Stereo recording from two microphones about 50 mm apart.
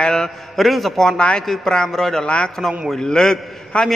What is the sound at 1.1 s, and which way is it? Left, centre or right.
Speech, centre.